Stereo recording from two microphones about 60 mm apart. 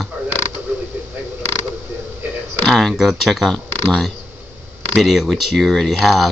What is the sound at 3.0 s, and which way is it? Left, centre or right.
Speech, centre.